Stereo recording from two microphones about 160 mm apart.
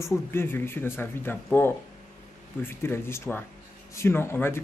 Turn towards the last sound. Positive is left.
turn(degrees=15)  # may be behind; listen again after turning